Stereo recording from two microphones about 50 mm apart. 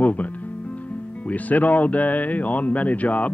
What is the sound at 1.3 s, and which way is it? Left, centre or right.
Speech, left.